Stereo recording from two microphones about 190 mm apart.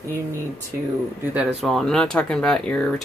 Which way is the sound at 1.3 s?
5° right (ahead or behind).